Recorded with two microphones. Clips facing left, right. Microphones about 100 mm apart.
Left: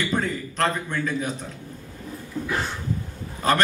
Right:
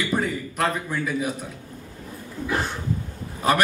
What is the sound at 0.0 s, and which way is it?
A man's voice, 10° right (ahead or behind).